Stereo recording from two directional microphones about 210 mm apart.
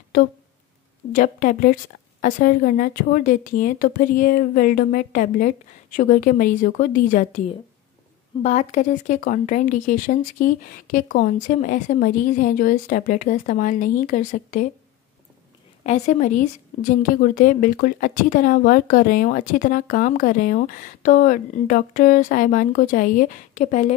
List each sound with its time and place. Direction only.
0.1 s speech: 40° left (ahead or behind)
15.8 s speech: 35° left (ahead or behind)